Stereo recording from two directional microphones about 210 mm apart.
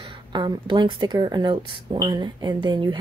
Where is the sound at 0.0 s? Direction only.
20° right (ahead or behind).